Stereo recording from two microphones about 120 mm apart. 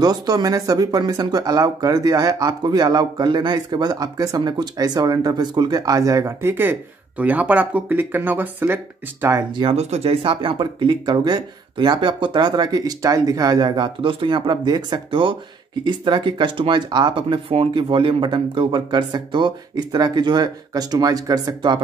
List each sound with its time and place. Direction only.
0.0 s speech: 35° right (ahead or behind)
9.5 s speech: 40° right (ahead or behind)
9.8 s speech: 65° right (ahead or behind); by 21.7 s 30° right (ahead or behind)